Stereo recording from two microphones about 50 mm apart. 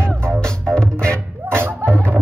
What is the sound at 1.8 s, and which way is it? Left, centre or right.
Music, right.